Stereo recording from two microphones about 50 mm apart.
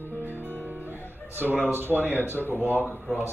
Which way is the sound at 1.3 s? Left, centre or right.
Right.